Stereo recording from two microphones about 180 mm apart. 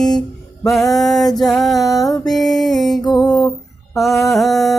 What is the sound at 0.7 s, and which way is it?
Music, centre (ahead or behind).